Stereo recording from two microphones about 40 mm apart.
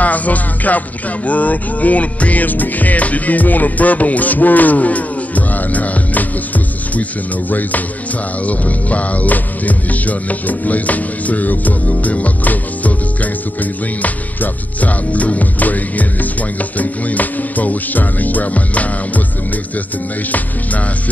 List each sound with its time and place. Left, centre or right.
0.0 s music: left
20.2 s music: left